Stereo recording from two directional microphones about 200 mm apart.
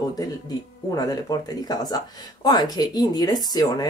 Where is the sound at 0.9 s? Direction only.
20° left (ahead or behind).